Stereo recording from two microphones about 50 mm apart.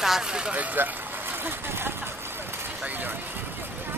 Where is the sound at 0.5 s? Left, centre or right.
Right.